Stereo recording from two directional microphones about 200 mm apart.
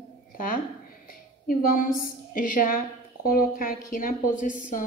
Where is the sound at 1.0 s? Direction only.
45° left (ahead or behind).